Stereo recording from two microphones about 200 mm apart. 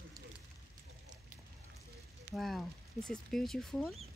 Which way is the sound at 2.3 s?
Centre (ahead or behind).